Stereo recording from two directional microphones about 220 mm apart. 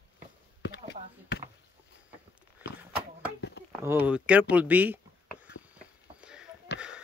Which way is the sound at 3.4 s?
50° left (ahead or behind).